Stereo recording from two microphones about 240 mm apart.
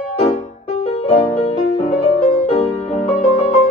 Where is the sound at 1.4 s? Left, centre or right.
Left.